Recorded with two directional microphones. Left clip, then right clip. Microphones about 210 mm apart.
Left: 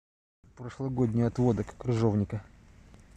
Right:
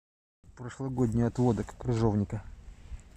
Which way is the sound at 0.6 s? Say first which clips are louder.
Left 1 dB; 5° left (ahead or behind).